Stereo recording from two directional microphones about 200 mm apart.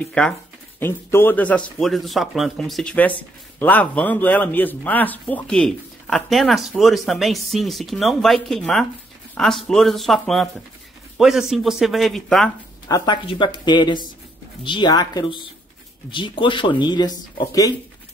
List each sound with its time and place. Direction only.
0.0 s speech: 5° left (ahead or behind)
12.8 s speech: 20° left (ahead or behind)